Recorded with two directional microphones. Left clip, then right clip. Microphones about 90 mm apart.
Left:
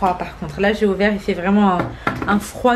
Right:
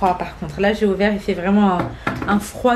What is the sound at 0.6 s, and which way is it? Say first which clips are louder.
Speech: even; 10° left (ahead or behind).